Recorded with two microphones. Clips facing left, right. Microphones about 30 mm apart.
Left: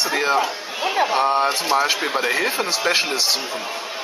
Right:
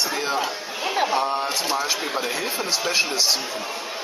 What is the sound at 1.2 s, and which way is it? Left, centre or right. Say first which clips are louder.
Speech: left 5 dB; left.